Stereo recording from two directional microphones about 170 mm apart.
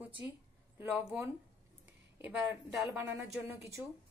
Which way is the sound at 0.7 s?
10° right (ahead or behind).